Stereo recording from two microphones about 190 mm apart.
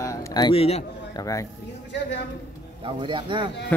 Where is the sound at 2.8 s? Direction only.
25° right (ahead or behind).